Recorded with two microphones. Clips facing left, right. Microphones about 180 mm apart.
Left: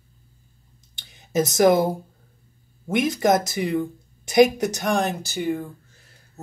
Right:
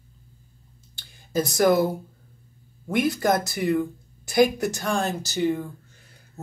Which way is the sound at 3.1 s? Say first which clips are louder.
Left 3 dB; 20° left (ahead or behind).